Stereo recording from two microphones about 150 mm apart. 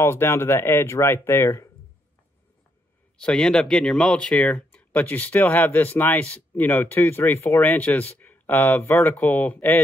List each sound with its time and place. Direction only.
0.0 s speech: 15° left (ahead or behind)
3.2 s speech: 5° left (ahead or behind)